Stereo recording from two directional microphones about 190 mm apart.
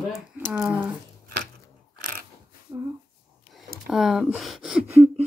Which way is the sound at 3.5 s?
Centre (ahead or behind).